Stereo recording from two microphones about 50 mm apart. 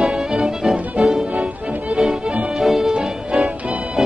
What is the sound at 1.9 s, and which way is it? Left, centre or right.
Music, centre.